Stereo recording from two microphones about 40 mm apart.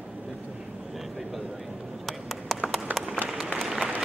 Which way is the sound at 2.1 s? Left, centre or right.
Centre.